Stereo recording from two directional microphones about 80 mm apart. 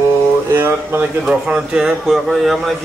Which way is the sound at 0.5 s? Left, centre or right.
Right.